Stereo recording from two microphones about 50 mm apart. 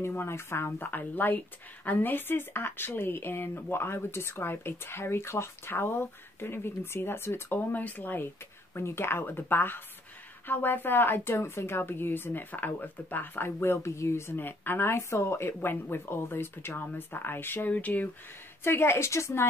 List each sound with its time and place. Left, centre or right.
0.0 s speech: left
0.8 s speech: left
7.5 s speech: left
8.7 s speech: left
14.3 s speech: left
17.6 s speech: left
18.6 s speech: left